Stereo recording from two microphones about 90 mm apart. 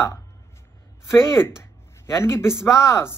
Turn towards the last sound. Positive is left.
turn(degrees=30)  # may be behind; listen again after turning